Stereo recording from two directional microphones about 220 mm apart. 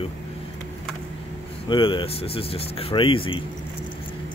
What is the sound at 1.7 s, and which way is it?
Speech, 25° left (ahead or behind).